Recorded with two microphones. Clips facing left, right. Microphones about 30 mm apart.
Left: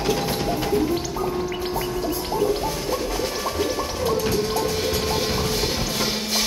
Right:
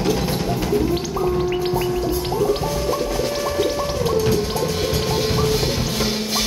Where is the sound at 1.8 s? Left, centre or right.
Centre.